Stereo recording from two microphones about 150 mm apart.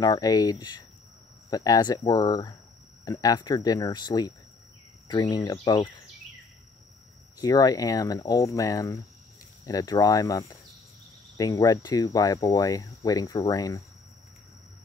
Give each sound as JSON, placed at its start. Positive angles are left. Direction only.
{"t": 0.0, "sound": "speech", "side_deg": 25}
{"t": 7.3, "sound": "speech", "side_deg": 25}